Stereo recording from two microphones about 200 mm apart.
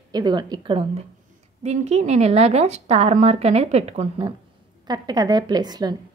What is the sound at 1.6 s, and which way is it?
A woman's voice, 35° right (ahead or behind).